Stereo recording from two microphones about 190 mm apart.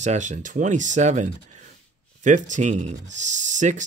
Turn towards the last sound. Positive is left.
turn(degrees=-40)  # may be behind; listen again after turning